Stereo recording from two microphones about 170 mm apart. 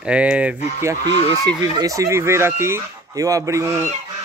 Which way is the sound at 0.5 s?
40° left (ahead or behind).